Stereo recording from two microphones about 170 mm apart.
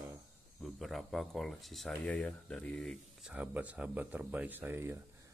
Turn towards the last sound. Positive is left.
turn(degrees=-15)  # may be behind; listen again after turning